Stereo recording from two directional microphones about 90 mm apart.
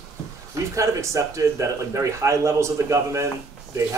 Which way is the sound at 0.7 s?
35° right (ahead or behind).